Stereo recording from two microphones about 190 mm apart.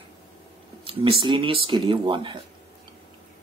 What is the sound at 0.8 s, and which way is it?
Speech, 30° right (ahead or behind).